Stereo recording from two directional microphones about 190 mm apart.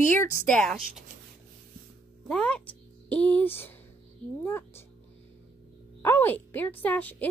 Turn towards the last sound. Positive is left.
turn(degrees=10)  # may be behind; listen again after turning